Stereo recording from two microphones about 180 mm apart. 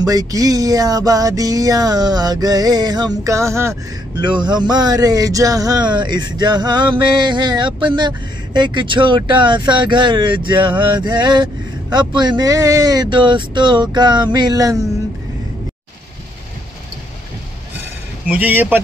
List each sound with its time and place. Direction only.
0.0 s speech: 20° right (ahead or behind)
18.2 s speech: 10° right (ahead or behind)